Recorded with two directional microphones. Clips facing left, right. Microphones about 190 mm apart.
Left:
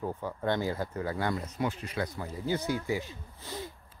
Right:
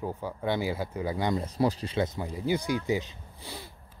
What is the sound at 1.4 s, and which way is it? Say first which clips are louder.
Speech: right 6 dB; 30° right (ahead or behind).